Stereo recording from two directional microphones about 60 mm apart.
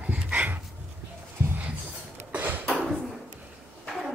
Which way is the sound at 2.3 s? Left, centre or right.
Right.